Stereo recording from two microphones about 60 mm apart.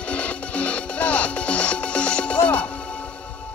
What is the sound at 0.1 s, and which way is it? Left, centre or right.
Music, left.